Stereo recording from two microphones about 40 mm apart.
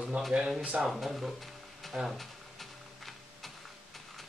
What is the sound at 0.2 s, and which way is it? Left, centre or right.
Speech, right.